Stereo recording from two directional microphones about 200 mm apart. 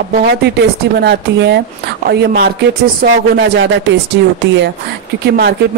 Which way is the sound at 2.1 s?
50° right (ahead or behind).